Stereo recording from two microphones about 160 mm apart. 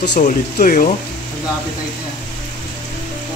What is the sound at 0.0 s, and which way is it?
Speech, 80° left.